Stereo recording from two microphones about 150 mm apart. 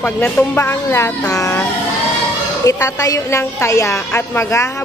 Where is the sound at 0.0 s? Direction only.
10° left (ahead or behind).